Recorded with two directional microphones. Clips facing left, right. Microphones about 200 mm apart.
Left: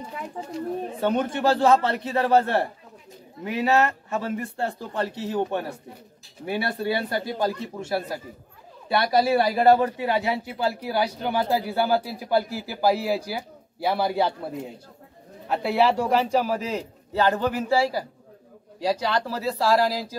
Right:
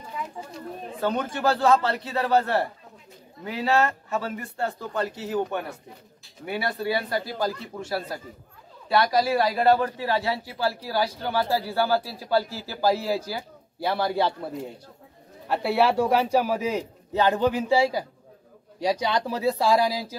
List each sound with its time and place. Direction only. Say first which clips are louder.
0.9 s a man's voice: left 1 dB; 25° left (ahead or behind); by 14.7 s 10° left (ahead or behind)
15.4 s a man's voice: left 1 dB; 5° right (ahead or behind)